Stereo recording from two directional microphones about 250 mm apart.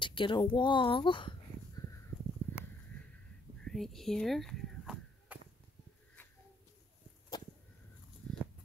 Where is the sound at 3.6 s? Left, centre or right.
Centre.